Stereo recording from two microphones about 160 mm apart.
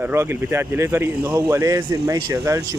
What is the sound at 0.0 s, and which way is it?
A man's voice, 15° right (ahead or behind).